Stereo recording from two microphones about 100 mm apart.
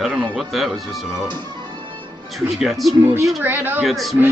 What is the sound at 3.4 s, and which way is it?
Speech, 20° right (ahead or behind).